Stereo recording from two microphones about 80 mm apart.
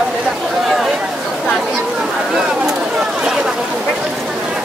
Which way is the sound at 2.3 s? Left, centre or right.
Centre.